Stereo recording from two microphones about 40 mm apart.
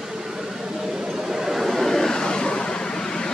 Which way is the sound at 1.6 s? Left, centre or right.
Centre.